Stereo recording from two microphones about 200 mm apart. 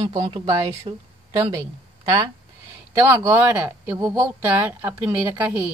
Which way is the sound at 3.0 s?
10° right (ahead or behind).